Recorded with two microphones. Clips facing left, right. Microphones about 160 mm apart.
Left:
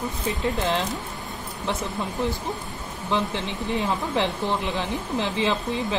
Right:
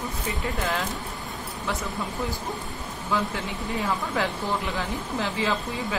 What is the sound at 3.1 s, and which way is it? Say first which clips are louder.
Speech: left 2 dB; 25° left (ahead or behind).